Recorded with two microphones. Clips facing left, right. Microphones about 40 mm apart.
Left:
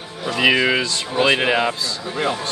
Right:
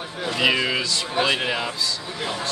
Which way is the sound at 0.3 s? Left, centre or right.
Left.